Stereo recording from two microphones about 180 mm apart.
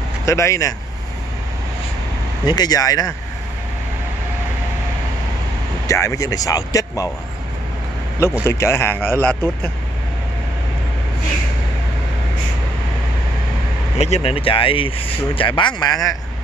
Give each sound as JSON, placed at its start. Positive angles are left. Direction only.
{"t": 0.2, "sound": "speech", "side_deg": 15}
{"t": 2.4, "sound": "speech", "side_deg": 20}
{"t": 5.9, "sound": "speech", "side_deg": 15}
{"t": 8.2, "sound": "speech", "side_deg": 15}
{"t": 13.9, "sound": "speech", "side_deg": 35}